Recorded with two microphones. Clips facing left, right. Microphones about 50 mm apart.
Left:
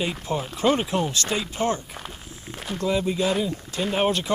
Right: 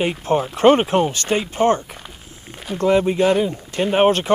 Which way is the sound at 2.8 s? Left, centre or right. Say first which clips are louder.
Right 8 dB; right.